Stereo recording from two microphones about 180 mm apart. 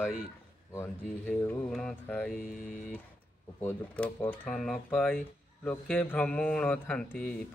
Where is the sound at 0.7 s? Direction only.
10° left (ahead or behind).